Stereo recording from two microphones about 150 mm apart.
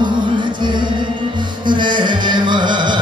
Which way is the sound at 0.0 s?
30° right (ahead or behind).